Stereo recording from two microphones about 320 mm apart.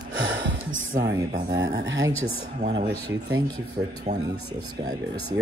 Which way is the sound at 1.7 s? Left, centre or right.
Right.